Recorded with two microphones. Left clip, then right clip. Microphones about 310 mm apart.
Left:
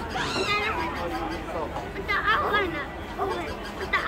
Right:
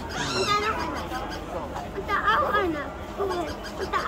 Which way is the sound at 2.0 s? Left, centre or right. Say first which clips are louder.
Right 1 dB; right.